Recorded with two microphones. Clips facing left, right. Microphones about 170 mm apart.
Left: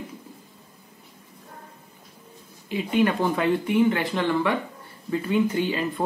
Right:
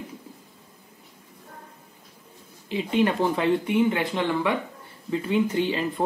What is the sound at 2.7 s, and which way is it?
Speech, 25° right (ahead or behind).